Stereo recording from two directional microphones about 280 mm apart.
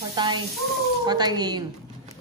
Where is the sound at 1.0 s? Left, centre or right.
Centre.